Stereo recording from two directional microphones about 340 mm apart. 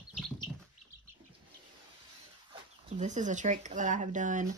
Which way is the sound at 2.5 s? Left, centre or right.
Centre.